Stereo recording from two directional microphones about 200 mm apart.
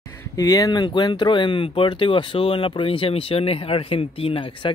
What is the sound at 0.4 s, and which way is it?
Speech, 15° left (ahead or behind).